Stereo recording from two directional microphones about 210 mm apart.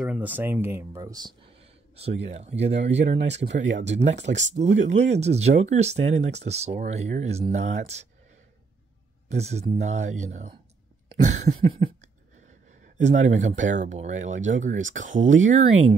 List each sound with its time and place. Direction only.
0.0 s speech: 5° right (ahead or behind)
2.0 s speech: 30° right (ahead or behind)
9.3 s speech: 30° right (ahead or behind)
11.1 s a sound: 25° right (ahead or behind)
12.8 s speech: 35° right (ahead or behind)